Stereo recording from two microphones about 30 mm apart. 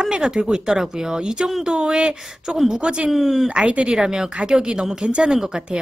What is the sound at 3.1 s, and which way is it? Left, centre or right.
Speech, centre.